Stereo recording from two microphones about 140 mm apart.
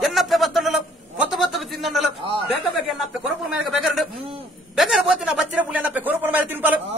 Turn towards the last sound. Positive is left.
turn(degrees=-10)  # may be behind; listen again after turning